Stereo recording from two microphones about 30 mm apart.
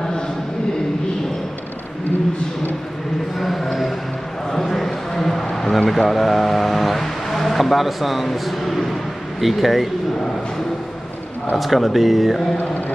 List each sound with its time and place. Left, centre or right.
3.3 s a sound: centre
5.9 s speech: centre
11.5 s speech: centre